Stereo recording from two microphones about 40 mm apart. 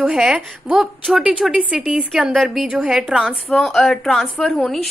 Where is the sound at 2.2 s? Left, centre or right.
Centre.